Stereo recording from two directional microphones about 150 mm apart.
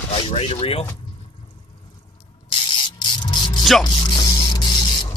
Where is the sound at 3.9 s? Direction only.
35° left (ahead or behind).